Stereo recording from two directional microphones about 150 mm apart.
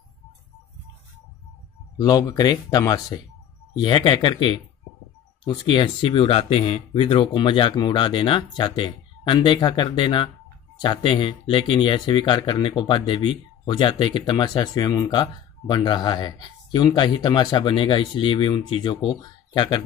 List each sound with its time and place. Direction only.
2.0 s speech: 25° left (ahead or behind)